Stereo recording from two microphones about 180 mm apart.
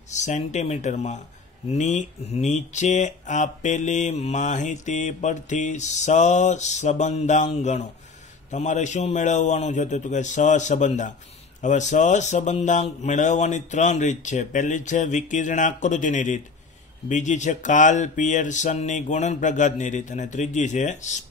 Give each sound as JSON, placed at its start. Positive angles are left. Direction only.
{"t": 0.1, "sound": "speech", "side_deg": 40}